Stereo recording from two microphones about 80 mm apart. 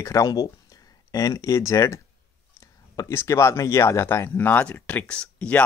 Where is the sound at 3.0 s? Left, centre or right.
Left.